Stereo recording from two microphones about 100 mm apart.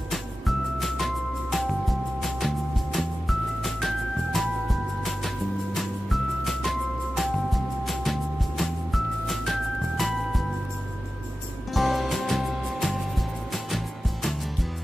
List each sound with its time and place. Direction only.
0.1 s music: centre (ahead or behind)
11.7 s music: centre (ahead or behind)